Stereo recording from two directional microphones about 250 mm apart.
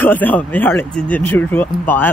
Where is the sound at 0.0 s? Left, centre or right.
Centre.